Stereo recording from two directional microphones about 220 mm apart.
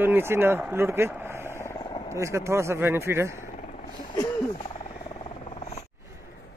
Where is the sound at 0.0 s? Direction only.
10° right (ahead or behind).